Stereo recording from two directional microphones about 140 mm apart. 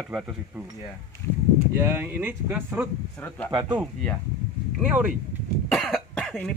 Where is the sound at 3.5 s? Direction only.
30° right (ahead or behind).